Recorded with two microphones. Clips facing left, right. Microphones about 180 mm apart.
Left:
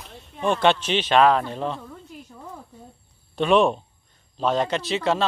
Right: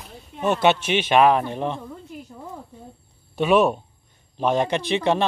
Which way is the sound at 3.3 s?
5° right (ahead or behind).